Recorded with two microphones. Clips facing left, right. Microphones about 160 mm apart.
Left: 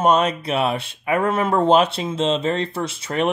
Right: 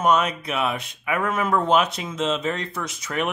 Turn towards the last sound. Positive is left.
turn(degrees=30)  # may be behind; listen again after turning